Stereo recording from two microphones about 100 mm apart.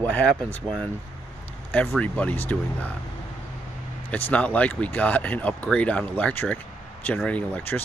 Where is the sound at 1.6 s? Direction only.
20° left (ahead or behind).